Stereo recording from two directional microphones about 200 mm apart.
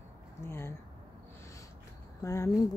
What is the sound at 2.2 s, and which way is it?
Speech, 15° left (ahead or behind).